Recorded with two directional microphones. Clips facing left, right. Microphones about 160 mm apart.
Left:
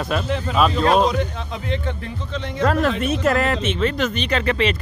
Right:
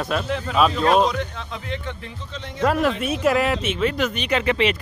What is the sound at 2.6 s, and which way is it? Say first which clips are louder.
Speech: left 1 dB; 10° right (ahead or behind).